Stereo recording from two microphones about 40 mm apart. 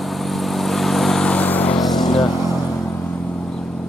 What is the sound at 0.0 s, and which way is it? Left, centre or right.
Vehicle, centre.